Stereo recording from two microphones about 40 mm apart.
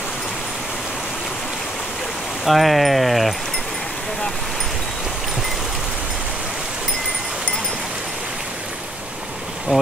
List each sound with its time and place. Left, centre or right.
2.4 s speech: centre
9.7 s bee: centre